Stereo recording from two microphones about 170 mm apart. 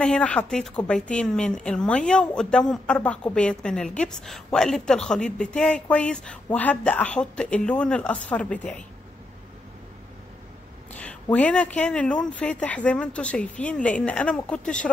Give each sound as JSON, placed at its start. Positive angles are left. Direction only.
{"t": 0.0, "sound": "a woman's voice", "side_deg": 5}
{"t": 10.9, "sound": "a sound", "side_deg": 5}
{"t": 11.3, "sound": "speech", "side_deg": 10}